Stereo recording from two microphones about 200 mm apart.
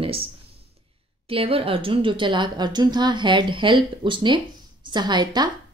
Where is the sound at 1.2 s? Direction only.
25° right (ahead or behind).